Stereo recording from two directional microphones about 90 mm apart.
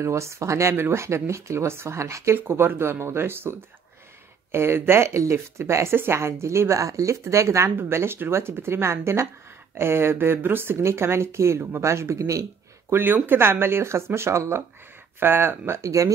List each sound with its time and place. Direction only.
0.0 s speech: 30° right (ahead or behind)
12.9 s speech: 20° right (ahead or behind)